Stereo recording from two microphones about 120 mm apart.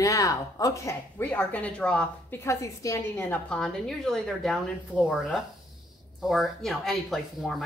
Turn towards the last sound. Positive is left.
turn(degrees=0)  # may be behind; listen again after turning